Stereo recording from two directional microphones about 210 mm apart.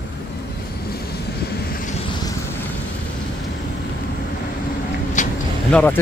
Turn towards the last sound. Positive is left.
turn(degrees=10)  # may be behind; listen again after turning